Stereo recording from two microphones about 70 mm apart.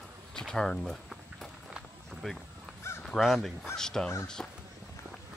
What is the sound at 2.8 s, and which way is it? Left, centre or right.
Crow, left.